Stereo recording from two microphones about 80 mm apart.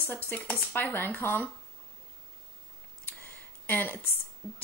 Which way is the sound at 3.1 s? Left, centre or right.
Left.